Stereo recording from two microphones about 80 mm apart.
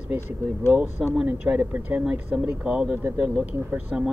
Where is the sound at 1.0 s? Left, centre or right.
Centre.